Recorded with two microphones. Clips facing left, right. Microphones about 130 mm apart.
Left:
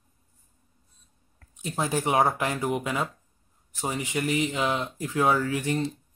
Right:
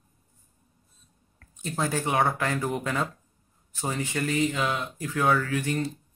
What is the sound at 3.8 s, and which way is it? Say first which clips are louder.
Speech: left 1 dB; 15° left (ahead or behind).